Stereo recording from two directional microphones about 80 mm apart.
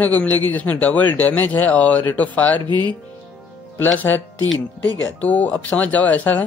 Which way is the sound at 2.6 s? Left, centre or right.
Right.